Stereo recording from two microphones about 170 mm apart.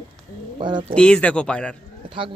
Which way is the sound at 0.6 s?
30° right (ahead or behind).